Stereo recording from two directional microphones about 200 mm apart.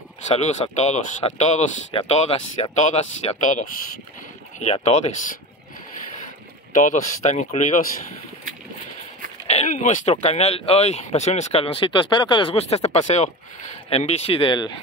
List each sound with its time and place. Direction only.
0.3 s speech: 35° left (ahead or behind)
6.7 s speech: 40° left (ahead or behind)
9.5 s speech: 35° left (ahead or behind)